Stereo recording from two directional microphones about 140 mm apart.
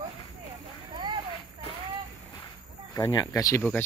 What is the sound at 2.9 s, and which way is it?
Speech, 20° left (ahead or behind).